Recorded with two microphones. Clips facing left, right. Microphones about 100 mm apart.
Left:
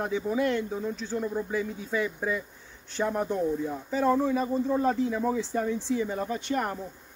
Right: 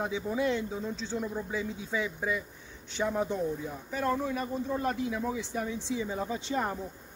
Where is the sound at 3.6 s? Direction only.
Centre (ahead or behind).